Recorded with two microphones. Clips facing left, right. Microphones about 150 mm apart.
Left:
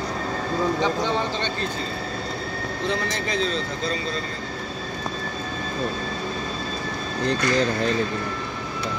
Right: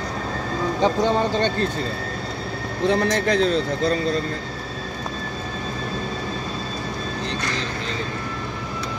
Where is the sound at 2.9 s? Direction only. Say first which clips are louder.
Right 8 dB; 60° right (ahead or behind).